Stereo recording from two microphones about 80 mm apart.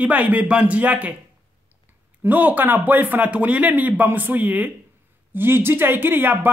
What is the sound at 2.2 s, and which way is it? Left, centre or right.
Speech, right.